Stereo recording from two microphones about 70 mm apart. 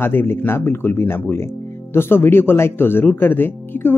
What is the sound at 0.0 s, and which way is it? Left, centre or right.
Speech, left.